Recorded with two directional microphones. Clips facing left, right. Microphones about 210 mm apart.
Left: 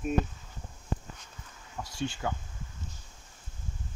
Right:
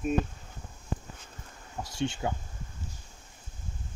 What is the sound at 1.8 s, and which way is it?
Speech, 25° right (ahead or behind).